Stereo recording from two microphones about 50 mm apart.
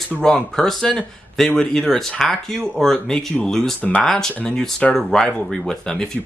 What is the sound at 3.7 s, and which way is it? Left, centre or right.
Speech, left.